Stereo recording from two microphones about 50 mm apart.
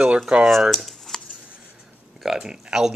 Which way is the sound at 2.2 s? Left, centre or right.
Centre.